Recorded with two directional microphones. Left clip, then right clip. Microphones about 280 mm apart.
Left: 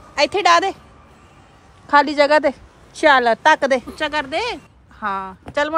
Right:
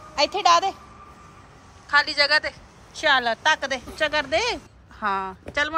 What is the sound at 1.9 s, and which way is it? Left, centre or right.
A woman's voice, centre.